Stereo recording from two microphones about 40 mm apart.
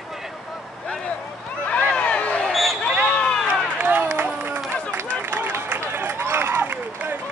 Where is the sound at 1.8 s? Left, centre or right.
Left.